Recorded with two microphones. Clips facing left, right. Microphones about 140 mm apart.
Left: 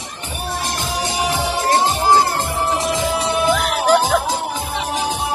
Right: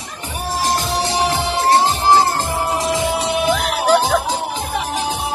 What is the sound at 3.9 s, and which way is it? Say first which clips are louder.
Music: even; 10° left (ahead or behind).